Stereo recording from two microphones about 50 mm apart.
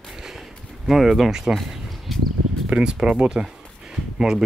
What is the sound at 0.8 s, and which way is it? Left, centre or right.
Speech, centre.